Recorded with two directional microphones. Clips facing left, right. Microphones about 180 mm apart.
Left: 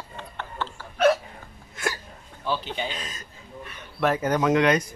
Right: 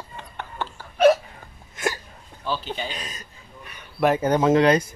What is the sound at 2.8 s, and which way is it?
Speech, 15° right (ahead or behind).